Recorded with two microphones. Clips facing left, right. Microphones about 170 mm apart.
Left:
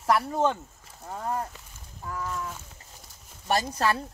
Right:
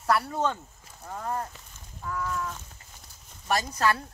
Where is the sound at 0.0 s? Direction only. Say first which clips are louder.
Left 2 dB; 25° left (ahead or behind).